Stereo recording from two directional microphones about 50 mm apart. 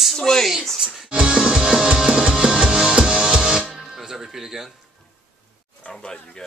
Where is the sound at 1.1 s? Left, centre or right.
Centre.